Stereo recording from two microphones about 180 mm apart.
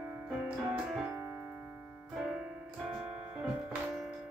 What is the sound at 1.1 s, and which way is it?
Music, 15° right (ahead or behind).